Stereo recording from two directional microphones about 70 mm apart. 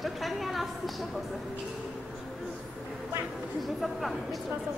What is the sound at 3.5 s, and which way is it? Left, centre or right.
Speech, centre.